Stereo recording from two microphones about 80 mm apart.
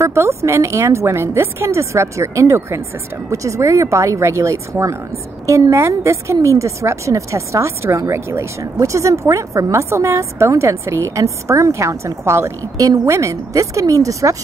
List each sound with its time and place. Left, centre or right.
0.0 s a woman's voice: right